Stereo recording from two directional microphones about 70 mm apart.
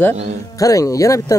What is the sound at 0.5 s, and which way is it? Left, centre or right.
Speech, left.